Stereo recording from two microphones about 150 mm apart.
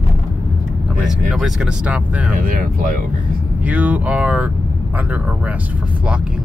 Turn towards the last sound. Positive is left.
turn(degrees=-10)  # may be behind; listen again after turning